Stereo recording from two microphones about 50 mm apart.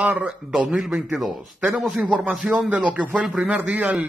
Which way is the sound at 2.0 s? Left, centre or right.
Right.